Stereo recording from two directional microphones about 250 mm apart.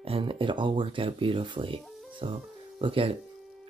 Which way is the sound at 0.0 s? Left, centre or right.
Right.